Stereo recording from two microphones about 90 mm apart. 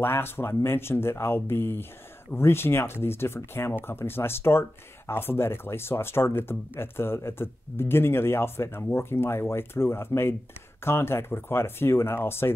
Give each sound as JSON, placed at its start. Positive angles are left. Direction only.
{"t": 0.0, "sound": "speech", "side_deg": 25}